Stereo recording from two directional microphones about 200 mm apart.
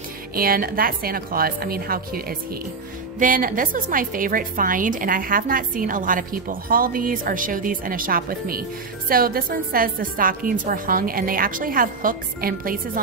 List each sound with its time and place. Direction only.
0.3 s a woman's voice: 45° right (ahead or behind)